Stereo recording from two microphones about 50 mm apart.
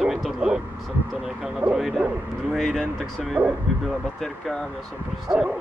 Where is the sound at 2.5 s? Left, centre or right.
Centre.